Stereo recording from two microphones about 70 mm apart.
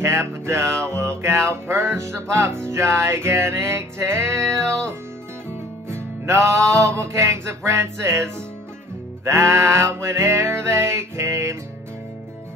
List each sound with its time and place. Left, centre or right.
0.0 s music: right
9.3 s music: right